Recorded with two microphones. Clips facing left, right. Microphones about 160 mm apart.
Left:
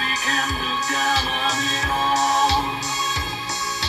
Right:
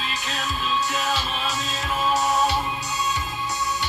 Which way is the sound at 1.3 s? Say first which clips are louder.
Left 3 dB; 80° left.